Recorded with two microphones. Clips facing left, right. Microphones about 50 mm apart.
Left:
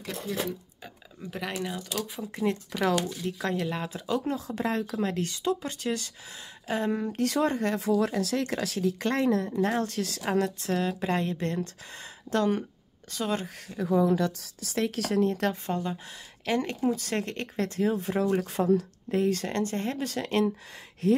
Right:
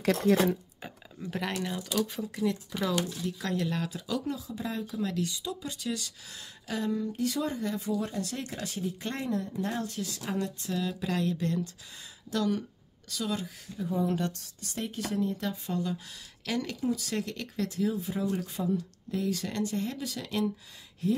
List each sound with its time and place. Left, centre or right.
0.0 s speech: right
1.5 s speech: centre
2.7 s speech: left
3.3 s speech: left
3.9 s a woman's voice: left
4.5 s speech: left
5.0 s a woman's voice: left
7.0 s speech: left
10.7 s a woman's voice: left
14.8 s speech: left
15.6 s a woman's voice: left
19.1 s speech: left
21.0 s speech: left